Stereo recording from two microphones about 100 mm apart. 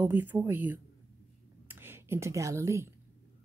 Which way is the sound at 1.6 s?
25° right (ahead or behind).